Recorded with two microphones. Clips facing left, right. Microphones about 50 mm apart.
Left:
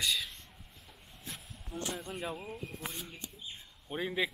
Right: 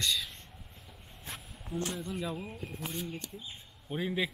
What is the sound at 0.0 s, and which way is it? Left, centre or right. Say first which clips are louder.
Speech: right 1 dB; centre.